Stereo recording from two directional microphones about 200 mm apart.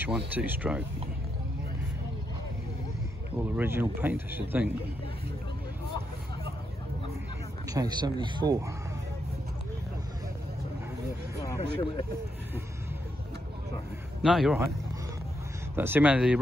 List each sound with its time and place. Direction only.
0.3 s speech: 10° right (ahead or behind)
3.5 s speech: 10° right (ahead or behind)
7.7 s a man's voice: 20° right (ahead or behind)
11.4 s speech: 15° left (ahead or behind)
14.2 s speech: centre (ahead or behind)
15.7 s speech: 10° right (ahead or behind)